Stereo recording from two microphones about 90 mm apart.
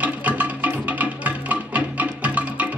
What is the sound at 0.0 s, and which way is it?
Music, 15° right (ahead or behind).